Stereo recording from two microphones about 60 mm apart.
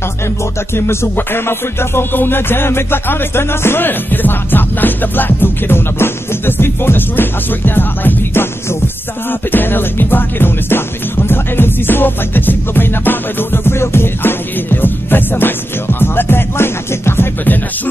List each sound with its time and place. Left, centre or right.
0.7 s music: left